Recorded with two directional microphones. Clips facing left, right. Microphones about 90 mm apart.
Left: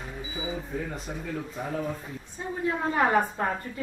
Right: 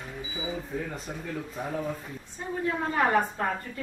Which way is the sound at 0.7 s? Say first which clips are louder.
Left 1 dB; centre (ahead or behind).